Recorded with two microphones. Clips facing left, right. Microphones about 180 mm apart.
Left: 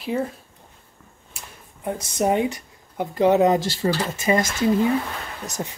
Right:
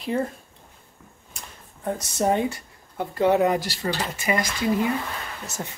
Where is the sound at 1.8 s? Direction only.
15° left (ahead or behind).